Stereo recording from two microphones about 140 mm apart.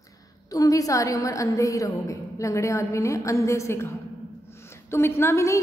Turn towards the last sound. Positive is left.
turn(degrees=20)  # may be behind; listen again after turning